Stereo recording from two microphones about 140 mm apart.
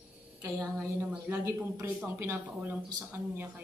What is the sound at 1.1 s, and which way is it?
A woman's voice, 15° right (ahead or behind).